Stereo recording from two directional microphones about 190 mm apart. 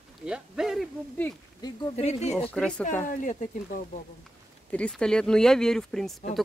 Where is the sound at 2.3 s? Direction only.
5° left (ahead or behind).